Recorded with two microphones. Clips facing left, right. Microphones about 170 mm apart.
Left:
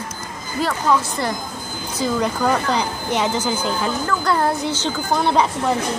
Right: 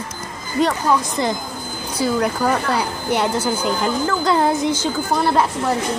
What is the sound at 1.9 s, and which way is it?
Speech, 10° right (ahead or behind).